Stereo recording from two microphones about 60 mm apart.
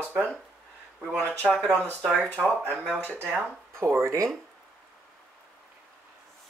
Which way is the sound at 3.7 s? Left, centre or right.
Right.